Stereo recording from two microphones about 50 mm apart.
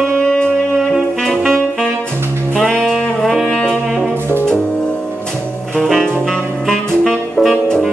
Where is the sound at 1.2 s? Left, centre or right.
Centre.